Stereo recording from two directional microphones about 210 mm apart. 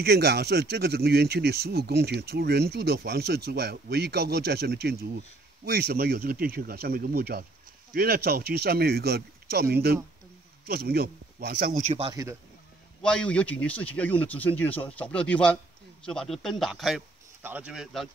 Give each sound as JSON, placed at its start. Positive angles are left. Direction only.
{"t": 0.0, "sound": "speech", "side_deg": -50}
{"t": 11.9, "sound": "speech", "side_deg": -20}
{"t": 13.0, "sound": "speech", "side_deg": 5}